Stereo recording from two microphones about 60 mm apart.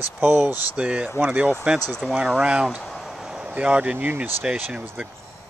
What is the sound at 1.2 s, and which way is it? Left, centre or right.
Speech, right.